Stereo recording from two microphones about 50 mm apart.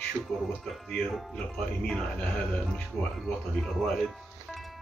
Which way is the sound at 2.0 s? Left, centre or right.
Centre.